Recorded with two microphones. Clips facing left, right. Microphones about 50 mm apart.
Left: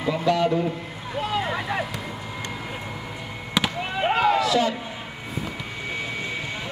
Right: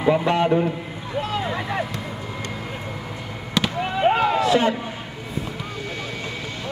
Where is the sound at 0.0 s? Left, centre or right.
Right.